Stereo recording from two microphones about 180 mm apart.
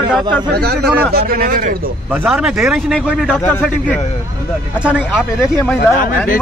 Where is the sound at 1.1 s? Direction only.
55° right (ahead or behind).